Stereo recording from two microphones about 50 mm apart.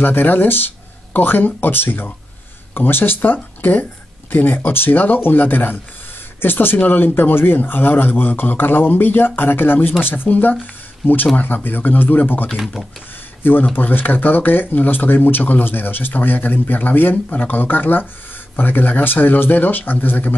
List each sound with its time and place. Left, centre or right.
0.0 s a man's voice: left